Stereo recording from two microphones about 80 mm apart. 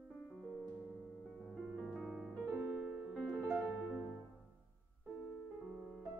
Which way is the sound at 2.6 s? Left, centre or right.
Centre.